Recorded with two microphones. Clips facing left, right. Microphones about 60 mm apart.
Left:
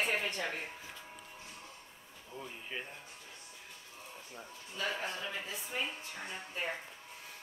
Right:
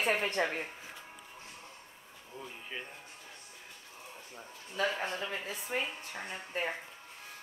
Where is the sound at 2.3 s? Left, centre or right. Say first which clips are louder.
Even; centre.